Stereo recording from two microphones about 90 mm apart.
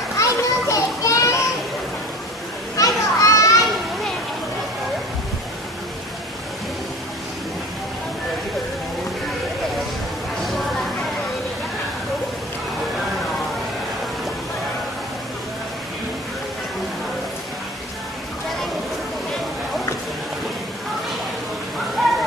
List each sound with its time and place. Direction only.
0.2 s children playing: 35° left (ahead or behind)
2.8 s children playing: 40° left (ahead or behind)